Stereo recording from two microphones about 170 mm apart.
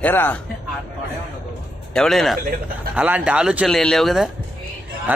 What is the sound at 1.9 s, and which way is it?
A man's voice, 5° left (ahead or behind).